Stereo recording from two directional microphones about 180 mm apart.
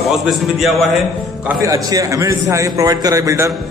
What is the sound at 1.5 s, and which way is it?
A man's voice, 20° right (ahead or behind).